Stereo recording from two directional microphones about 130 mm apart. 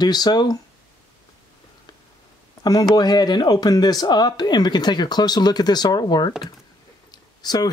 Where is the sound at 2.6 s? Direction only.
30° left (ahead or behind).